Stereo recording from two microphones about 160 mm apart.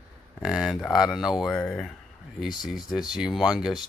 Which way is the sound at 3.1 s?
5° right (ahead or behind).